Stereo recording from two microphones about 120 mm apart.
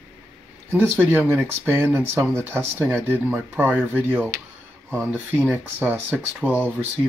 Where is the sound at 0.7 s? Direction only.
15° right (ahead or behind).